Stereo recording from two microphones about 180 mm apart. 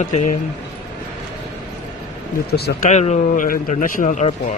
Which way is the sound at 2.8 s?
40° left (ahead or behind).